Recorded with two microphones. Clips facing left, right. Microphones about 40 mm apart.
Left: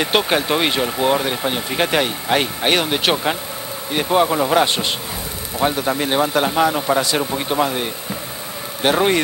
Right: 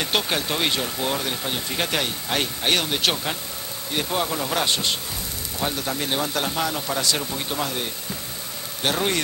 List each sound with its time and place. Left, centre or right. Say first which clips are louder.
0.0 s speech: left 6 dB; left